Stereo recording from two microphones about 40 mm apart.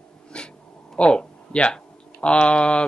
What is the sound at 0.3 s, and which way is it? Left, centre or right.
Dog, left.